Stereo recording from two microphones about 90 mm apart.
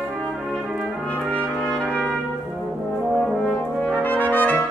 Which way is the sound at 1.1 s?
15° left (ahead or behind).